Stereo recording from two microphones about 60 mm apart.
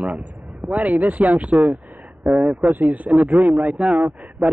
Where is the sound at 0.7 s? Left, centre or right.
Right.